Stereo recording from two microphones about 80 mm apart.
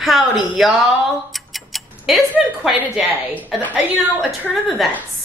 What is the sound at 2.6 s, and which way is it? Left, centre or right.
Speech, centre.